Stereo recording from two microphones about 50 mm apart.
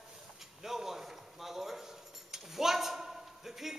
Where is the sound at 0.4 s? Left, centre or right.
Centre.